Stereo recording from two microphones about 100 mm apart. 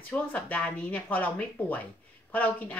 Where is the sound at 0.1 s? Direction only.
15° left (ahead or behind).